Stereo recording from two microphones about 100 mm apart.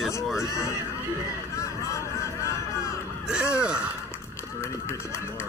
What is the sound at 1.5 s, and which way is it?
Music, 30° left (ahead or behind).